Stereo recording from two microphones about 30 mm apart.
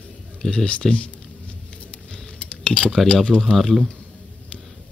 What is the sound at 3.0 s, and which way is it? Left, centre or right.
Speech, left.